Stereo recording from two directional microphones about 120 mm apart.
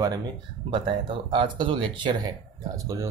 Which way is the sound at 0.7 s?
50° right (ahead or behind).